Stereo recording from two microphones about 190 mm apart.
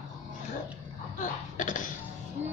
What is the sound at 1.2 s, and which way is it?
Speech, 45° left (ahead or behind).